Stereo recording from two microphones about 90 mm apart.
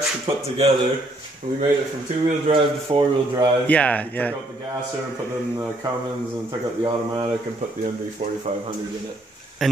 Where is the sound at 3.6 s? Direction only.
15° left (ahead or behind).